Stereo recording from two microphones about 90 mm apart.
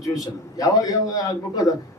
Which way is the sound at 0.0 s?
40° left (ahead or behind).